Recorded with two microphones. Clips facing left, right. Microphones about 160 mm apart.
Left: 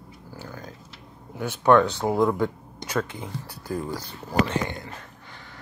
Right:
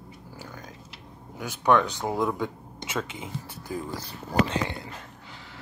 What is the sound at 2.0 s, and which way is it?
Speech, 15° left (ahead or behind).